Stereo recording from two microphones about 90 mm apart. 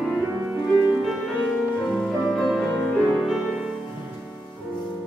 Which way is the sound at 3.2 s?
5° right (ahead or behind).